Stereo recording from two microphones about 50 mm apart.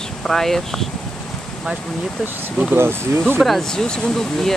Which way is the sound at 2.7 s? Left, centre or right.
Right.